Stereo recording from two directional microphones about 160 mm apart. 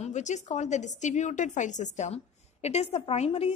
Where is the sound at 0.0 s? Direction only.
45° left (ahead or behind).